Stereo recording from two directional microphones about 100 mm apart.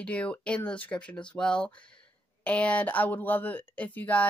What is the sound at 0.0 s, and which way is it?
Speech, 15° left (ahead or behind).